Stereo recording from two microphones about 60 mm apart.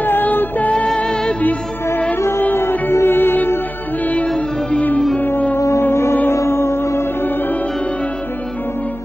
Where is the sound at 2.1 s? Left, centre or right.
Left.